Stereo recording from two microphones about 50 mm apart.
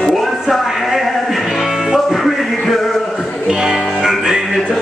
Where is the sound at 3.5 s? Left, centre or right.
Centre.